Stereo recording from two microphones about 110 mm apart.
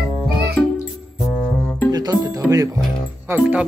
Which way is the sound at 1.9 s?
35° right (ahead or behind).